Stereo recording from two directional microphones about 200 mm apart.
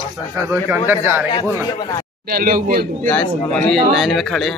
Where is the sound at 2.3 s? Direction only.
45° right (ahead or behind).